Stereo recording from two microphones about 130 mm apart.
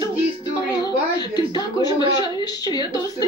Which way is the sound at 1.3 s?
30° left (ahead or behind).